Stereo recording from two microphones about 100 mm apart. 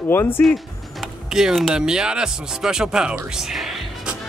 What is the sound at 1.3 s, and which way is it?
Speech, 5° right (ahead or behind).